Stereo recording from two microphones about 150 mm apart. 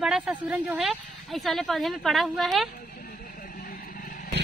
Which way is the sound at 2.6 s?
75° left (ahead or behind).